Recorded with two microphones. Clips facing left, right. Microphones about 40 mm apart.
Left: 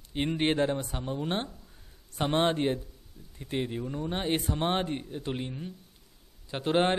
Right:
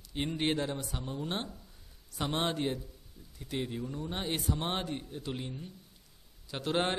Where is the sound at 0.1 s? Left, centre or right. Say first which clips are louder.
Left 4 dB; left.